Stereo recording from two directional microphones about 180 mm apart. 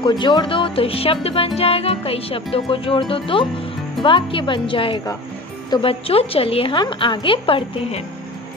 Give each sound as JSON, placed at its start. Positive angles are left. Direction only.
{"t": 0.0, "sound": "a woman's voice", "side_deg": 25}